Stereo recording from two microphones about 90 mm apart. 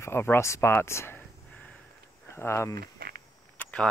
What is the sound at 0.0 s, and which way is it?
Speech, 25° left (ahead or behind).